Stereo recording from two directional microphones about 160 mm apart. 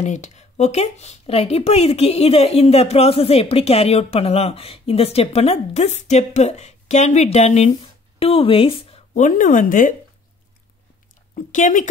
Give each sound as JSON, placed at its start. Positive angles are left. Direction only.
{"t": 0.0, "sound": "a woman's voice", "side_deg": 45}
{"t": 9.2, "sound": "speech", "side_deg": 55}
{"t": 11.5, "sound": "speech", "side_deg": 50}